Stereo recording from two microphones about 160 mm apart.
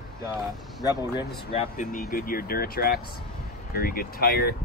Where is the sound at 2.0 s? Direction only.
65° left (ahead or behind).